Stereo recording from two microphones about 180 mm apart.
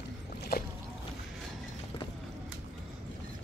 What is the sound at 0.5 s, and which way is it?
Boat, 60° left (ahead or behind).